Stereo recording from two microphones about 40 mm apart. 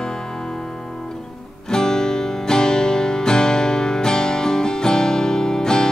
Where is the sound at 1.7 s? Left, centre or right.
Centre.